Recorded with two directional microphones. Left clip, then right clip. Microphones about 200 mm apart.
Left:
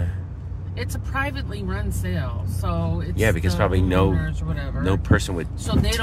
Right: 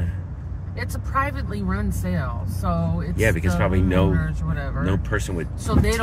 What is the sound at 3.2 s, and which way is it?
Speech, 20° left (ahead or behind).